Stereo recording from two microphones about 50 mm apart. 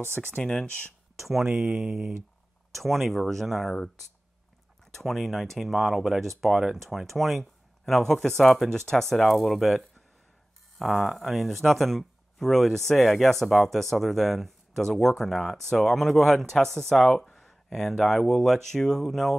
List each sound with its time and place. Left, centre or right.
0.1 s speech: left
0.4 s speech: centre
1.2 s speech: centre
2.7 s speech: centre
4.9 s speech: centre